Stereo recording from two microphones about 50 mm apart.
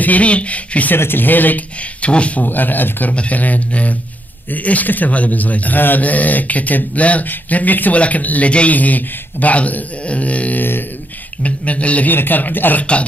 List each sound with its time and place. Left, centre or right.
0.0 s a man's voice: left
0.9 s a man's voice: left
2.0 s speech: left
2.4 s a man's voice: left
12.1 s a man's voice: left